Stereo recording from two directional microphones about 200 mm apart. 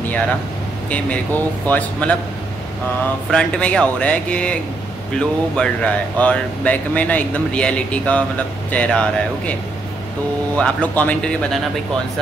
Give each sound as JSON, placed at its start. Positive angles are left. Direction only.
{"t": 0.8, "sound": "speech", "side_deg": 5}
{"t": 3.3, "sound": "speech", "side_deg": 5}